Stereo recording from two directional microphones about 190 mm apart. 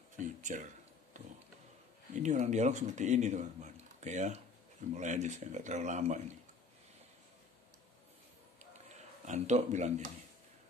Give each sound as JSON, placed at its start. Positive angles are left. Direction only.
{"t": 0.2, "sound": "a sound", "side_deg": -40}
{"t": 2.2, "sound": "speech", "side_deg": -40}
{"t": 9.2, "sound": "speech", "side_deg": -40}